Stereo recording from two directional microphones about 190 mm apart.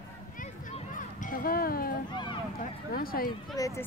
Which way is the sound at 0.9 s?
45° left (ahead or behind).